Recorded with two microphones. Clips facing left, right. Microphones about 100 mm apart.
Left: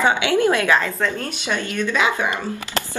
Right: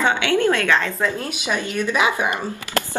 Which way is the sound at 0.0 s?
15° left (ahead or behind).